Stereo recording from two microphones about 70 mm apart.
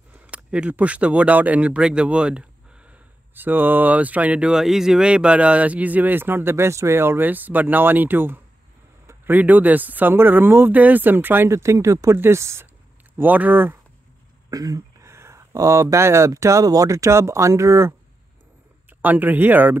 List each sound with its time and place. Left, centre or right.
0.3 s speech: centre
2.9 s speech: right
11.5 s speech: right
13.2 s speech: right
14.5 s a sound: right
15.0 s a sound: right
16.3 s speech: right
18.9 s speech: right